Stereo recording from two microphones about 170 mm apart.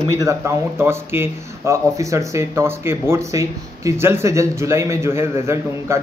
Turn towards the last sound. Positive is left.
turn(degrees=-15)  # may be behind; listen again after turning